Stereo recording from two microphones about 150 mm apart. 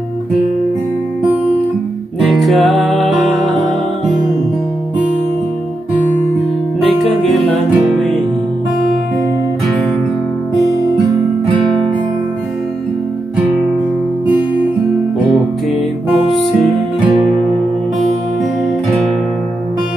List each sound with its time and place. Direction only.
2.1 s music: centre (ahead or behind)
6.8 s music: centre (ahead or behind)